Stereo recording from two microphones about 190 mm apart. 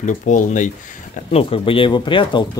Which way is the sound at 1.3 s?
30° left (ahead or behind).